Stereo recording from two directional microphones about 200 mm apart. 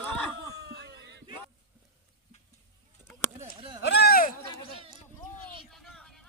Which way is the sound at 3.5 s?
25° right (ahead or behind).